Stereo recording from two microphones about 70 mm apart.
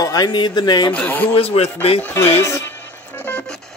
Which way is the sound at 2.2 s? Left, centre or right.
Left.